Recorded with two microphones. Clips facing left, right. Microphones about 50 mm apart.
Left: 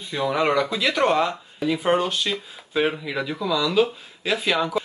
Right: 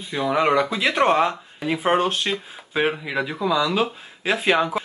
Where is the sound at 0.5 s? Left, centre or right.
Right.